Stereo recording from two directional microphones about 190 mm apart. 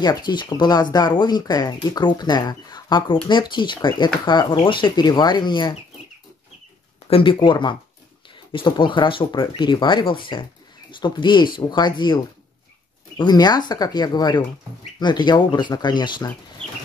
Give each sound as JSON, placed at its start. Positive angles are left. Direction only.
{"t": 0.0, "sound": "speech", "side_deg": 20}
{"t": 7.1, "sound": "speech", "side_deg": 30}
{"t": 13.2, "sound": "speech", "side_deg": 20}